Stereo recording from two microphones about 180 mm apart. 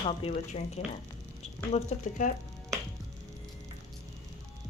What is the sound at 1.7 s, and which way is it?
Speech, 40° left (ahead or behind).